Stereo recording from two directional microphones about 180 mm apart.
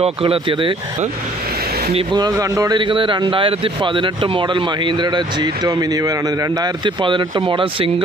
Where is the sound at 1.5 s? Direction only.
60° right (ahead or behind).